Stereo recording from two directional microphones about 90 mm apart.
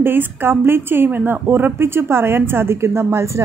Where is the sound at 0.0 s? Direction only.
25° right (ahead or behind).